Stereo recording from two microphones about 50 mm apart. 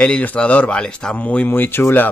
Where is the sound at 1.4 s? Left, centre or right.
Left.